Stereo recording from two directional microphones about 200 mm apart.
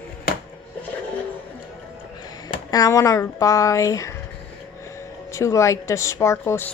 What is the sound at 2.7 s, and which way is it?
Speech, 15° left (ahead or behind).